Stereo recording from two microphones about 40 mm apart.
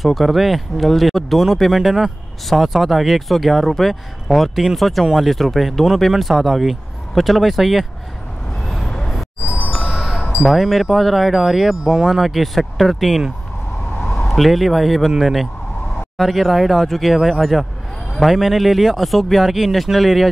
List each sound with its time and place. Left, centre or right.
0.0 s speech: centre
5.3 s speech: centre
8.8 s vehicle: centre
9.8 s chime: centre
10.4 s speech: centre